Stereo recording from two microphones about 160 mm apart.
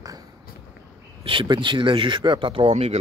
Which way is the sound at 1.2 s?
30° right (ahead or behind).